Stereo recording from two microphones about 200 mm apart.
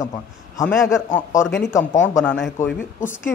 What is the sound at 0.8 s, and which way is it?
Speech, 15° left (ahead or behind).